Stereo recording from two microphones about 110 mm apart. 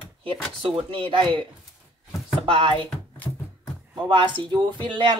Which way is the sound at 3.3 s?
25° left (ahead or behind).